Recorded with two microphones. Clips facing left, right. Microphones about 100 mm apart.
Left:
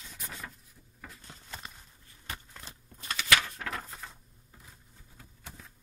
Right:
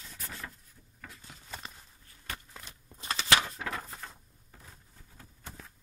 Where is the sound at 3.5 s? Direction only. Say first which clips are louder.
Right 1 dB; centre (ahead or behind).